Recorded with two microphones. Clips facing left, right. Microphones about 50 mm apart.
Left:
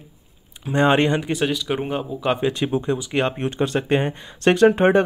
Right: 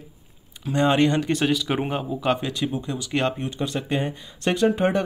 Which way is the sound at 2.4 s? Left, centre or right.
Left.